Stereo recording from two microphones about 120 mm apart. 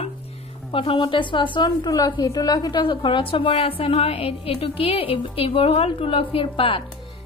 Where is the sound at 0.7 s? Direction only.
45° left (ahead or behind).